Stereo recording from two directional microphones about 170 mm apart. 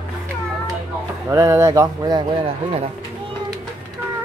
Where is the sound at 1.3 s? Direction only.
15° right (ahead or behind); by 2.9 s 30° right (ahead or behind).